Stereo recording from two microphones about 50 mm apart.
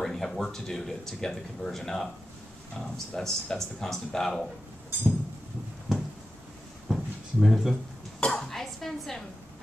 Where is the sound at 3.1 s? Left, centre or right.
Centre.